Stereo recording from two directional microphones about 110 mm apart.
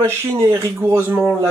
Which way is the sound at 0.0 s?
20° right (ahead or behind).